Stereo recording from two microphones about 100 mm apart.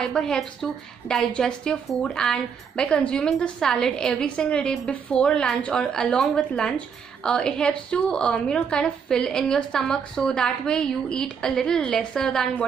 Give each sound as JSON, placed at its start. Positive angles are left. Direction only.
{"t": 0.0, "sound": "a woman's voice", "side_deg": 5}